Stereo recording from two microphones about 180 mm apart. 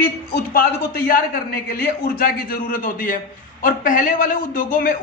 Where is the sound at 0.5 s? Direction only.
55° left (ahead or behind).